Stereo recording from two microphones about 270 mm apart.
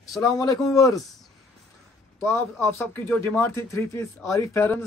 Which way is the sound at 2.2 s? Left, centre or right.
Centre.